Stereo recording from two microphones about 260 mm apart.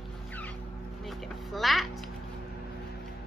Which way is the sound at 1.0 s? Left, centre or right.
Centre.